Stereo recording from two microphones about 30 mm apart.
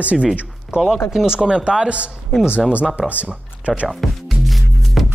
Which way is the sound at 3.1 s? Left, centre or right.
Right.